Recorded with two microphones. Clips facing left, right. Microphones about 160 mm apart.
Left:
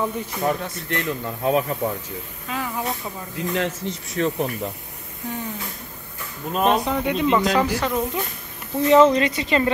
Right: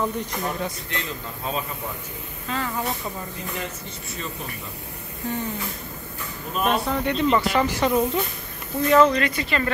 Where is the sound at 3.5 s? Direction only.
90° left.